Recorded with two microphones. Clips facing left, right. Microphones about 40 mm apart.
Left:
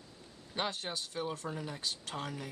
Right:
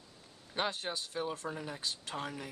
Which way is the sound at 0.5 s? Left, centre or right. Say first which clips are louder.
Right 1 dB; centre.